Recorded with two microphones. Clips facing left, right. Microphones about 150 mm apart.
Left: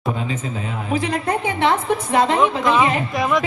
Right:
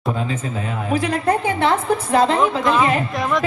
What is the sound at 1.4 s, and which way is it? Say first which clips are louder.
Speech: right 1 dB; 35° right (ahead or behind).